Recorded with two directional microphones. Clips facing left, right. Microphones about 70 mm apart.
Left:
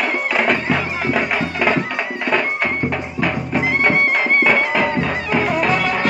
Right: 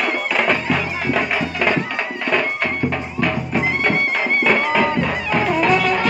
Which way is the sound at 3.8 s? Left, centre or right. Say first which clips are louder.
Left 3 dB; left.